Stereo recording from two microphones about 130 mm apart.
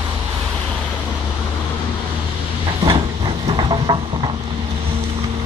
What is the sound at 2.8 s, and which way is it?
Train, 40° right (ahead or behind).